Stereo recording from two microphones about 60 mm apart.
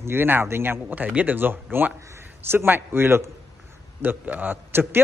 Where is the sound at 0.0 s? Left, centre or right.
Right.